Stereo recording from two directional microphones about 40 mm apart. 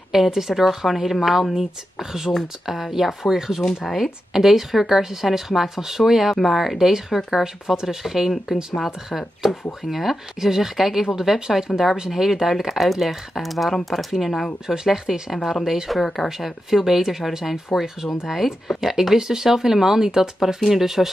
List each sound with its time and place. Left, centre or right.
0.1 s speech: centre
1.5 s speech: centre
3.6 s speech: centre
4.0 s speech: centre
8.5 s speech: right; by 13.7 s centre
14.7 s speech: centre
15.3 s speech: centre
15.6 s speech: centre